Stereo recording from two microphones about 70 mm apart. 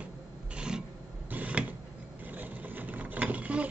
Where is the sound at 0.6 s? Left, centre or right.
Centre.